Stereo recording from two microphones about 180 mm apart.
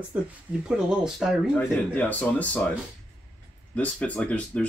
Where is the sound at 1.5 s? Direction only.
10° left (ahead or behind).